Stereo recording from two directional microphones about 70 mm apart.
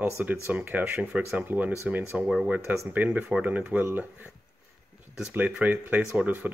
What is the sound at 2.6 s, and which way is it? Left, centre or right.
Speech, right.